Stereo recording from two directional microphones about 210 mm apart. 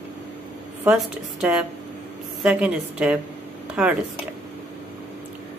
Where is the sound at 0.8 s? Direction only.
5° right (ahead or behind).